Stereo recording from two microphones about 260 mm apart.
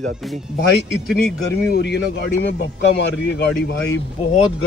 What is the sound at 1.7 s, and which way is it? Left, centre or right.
Speech, left.